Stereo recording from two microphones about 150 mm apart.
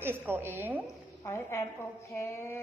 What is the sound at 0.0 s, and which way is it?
Speech, 15° right (ahead or behind).